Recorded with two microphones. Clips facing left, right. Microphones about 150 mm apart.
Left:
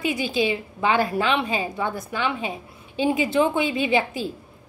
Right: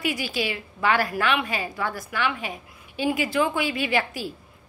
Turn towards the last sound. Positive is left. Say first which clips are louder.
# left 3 dB
turn(degrees=25)  # may be behind; listen again after turning